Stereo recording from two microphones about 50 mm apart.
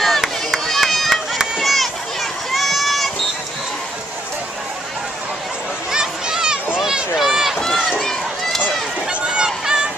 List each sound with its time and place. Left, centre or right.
0.0 s run: centre
5.9 s children playing: centre
6.8 s run: centre
9.2 s a sound: centre